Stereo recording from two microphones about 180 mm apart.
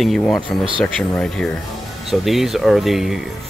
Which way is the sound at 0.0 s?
Centre (ahead or behind).